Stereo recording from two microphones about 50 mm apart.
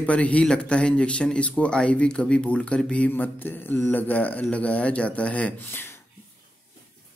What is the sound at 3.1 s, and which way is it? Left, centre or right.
Speech, left.